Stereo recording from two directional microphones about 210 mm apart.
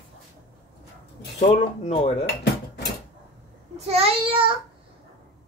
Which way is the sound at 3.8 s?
30° right (ahead or behind).